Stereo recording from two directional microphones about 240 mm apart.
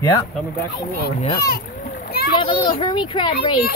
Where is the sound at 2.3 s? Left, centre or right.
Centre.